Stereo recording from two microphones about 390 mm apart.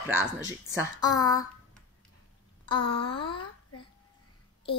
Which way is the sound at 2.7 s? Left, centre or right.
Centre.